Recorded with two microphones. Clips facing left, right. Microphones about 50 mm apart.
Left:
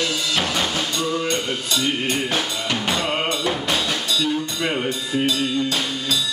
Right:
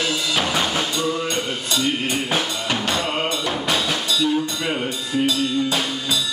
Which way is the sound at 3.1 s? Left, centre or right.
Centre.